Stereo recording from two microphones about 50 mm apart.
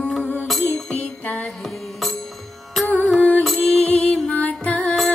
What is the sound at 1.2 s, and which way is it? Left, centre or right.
Music, left.